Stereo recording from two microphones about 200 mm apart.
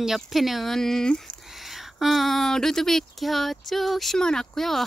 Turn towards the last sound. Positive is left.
turn(degrees=0)  # may be behind; listen again after turning